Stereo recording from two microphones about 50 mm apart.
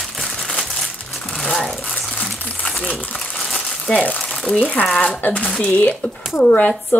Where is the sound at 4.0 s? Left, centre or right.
Left.